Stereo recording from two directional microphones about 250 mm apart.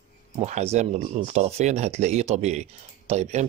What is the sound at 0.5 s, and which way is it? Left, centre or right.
Speech, right.